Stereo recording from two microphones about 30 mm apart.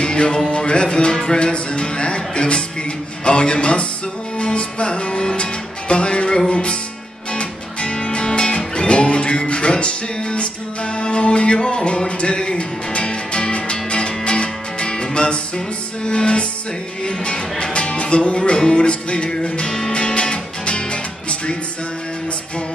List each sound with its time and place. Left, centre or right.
0.0 s music: left
1.5 s speech: left
4.4 s music: left